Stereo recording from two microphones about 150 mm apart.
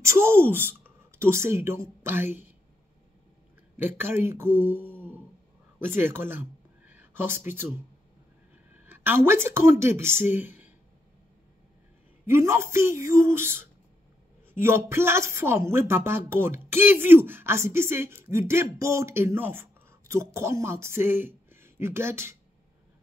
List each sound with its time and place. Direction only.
0.0 s a woman's voice: 15° right (ahead or behind)
3.7 s a woman's voice: 15° right (ahead or behind)
6.9 s a sound: 15° right (ahead or behind)
8.8 s speech: 15° right (ahead or behind)
12.3 s a woman's voice: 15° right (ahead or behind)